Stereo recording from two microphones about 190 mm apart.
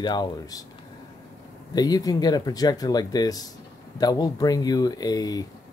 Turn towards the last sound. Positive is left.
turn(degrees=20)  # may be behind; listen again after turning